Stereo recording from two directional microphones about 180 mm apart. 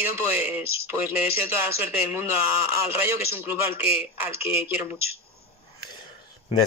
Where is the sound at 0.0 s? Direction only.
10° right (ahead or behind).